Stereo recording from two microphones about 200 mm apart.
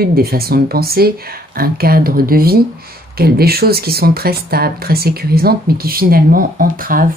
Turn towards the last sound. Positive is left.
turn(degrees=-45)  # may be behind; listen again after turning